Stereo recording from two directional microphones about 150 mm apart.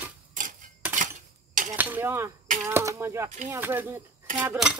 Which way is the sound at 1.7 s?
10° right (ahead or behind).